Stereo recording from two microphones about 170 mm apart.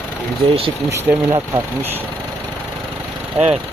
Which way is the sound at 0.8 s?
15° right (ahead or behind).